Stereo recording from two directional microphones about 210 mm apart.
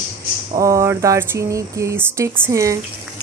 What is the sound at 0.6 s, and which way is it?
Speech, 15° right (ahead or behind).